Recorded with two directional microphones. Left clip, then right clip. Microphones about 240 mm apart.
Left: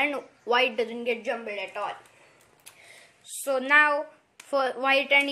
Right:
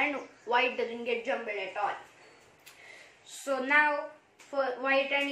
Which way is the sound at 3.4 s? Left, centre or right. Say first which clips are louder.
Left 5 dB; left.